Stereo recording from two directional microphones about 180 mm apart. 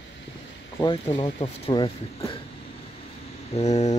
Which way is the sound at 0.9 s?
30° left (ahead or behind).